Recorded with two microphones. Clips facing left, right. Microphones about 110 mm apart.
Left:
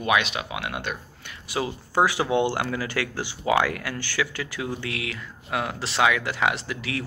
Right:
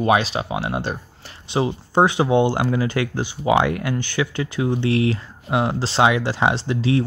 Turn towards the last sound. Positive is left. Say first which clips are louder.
# right 10 dB
turn(degrees=-25)  # may be behind; listen again after turning